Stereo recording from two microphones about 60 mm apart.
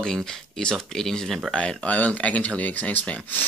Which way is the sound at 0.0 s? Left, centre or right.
Centre.